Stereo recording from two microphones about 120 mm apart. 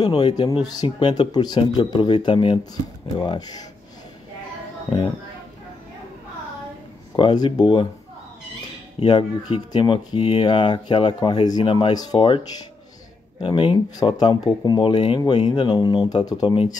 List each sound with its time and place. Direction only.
0.0 s speech: 40° left (ahead or behind)
3.2 s speech: 35° left (ahead or behind)
7.2 s speech: 40° left (ahead or behind)
9.0 s speech: 45° left (ahead or behind)
11.9 s speech: 35° left (ahead or behind)
13.4 s speech: 45° left (ahead or behind)